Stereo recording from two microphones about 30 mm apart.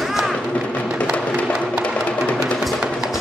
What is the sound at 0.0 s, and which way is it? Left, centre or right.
Music, centre.